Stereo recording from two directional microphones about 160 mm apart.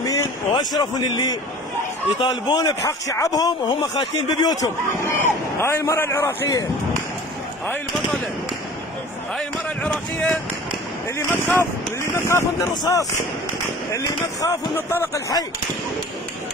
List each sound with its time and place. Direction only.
0.0 s speech: 20° left (ahead or behind)
2.5 s speech: 20° left (ahead or behind)
9.8 s speech: 5° left (ahead or behind)
11.1 s speech: 15° left (ahead or behind)